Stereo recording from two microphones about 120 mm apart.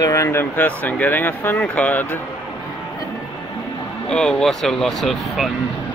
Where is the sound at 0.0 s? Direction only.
25° left (ahead or behind).